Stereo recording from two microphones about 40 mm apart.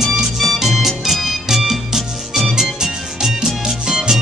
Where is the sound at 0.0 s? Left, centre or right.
Centre.